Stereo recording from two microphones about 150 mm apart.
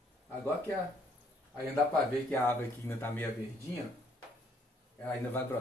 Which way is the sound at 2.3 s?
15° left (ahead or behind).